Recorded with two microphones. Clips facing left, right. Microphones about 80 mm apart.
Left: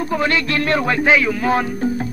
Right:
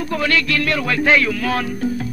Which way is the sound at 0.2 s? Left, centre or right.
Left.